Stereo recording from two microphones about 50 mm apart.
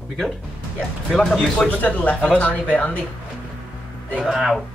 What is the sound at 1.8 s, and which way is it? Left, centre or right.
Speech, left.